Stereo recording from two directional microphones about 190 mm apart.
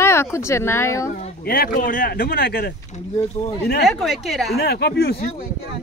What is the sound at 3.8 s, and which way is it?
Speech, centre (ahead or behind).